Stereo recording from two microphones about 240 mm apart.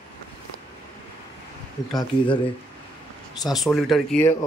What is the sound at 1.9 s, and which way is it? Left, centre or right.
Speech, left.